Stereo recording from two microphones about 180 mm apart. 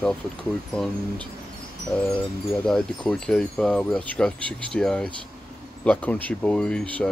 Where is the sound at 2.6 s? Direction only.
5° left (ahead or behind).